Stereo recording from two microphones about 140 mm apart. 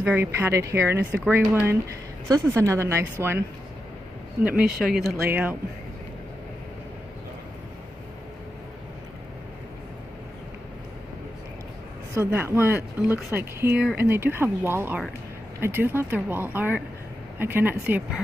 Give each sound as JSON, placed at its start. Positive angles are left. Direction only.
{"t": 0.0, "sound": "speech", "side_deg": -15}
{"t": 4.4, "sound": "speech", "side_deg": -10}
{"t": 12.2, "sound": "speech", "side_deg": -20}